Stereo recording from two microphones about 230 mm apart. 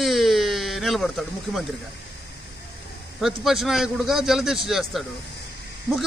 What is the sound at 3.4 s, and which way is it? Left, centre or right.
Speech, centre.